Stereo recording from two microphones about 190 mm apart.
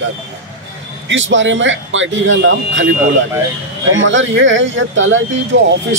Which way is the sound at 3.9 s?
80° right.